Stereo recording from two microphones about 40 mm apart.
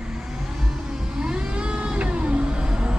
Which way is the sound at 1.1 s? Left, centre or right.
Right.